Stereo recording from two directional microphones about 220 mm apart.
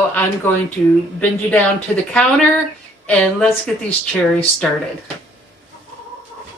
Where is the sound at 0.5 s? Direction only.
10° left (ahead or behind).